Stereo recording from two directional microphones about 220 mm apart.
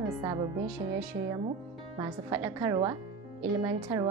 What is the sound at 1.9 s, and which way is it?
A woman's voice, 15° right (ahead or behind).